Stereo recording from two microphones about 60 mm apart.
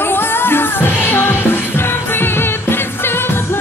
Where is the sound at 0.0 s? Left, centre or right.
Left.